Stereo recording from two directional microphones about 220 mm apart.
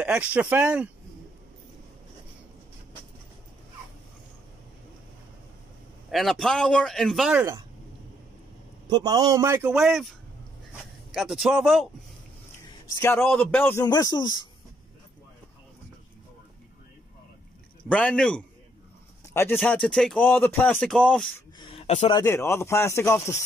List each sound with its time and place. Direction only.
0.0 s speech: 5° right (ahead or behind)
6.0 s speech: centre (ahead or behind)
8.8 s a man's voice: 20° right (ahead or behind); by 11.9 s centre (ahead or behind)
13.0 s speech: 10° left (ahead or behind)
17.8 s speech: 5° left (ahead or behind)
19.5 s speech: 5° left (ahead or behind)
21.5 s a sound: 25° left (ahead or behind)
22.2 s speech: 10° left (ahead or behind)